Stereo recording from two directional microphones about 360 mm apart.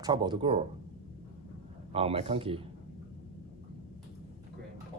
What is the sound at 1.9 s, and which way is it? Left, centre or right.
Speech, centre.